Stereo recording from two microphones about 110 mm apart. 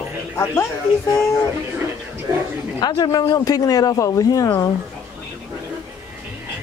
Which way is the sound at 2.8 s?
40° left (ahead or behind).